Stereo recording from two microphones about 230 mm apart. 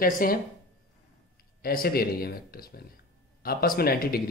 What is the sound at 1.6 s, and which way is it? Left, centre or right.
Speech, left.